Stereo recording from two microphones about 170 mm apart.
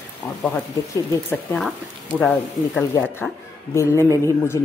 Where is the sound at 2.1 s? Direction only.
5° left (ahead or behind).